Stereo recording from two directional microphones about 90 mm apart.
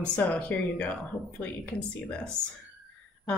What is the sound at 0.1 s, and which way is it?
Speech, 15° left (ahead or behind).